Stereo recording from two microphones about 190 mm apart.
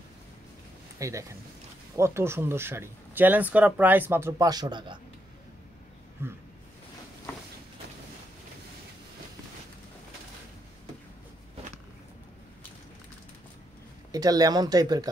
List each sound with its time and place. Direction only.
0.9 s speech: 15° right (ahead or behind)
6.2 s speech: 10° right (ahead or behind)
14.1 s speech: 20° right (ahead or behind)